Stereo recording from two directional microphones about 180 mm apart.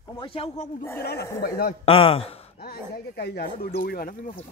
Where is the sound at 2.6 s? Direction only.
60° left (ahead or behind).